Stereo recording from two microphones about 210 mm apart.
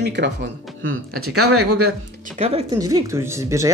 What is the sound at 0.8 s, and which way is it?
Speech, 80° right.